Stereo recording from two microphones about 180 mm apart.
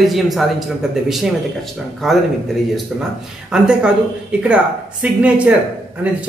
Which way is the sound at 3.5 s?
5° right (ahead or behind).